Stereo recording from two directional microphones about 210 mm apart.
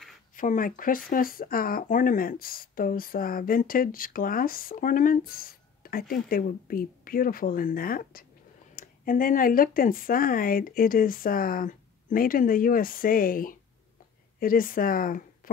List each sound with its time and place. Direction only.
0.4 s speech: 40° left (ahead or behind)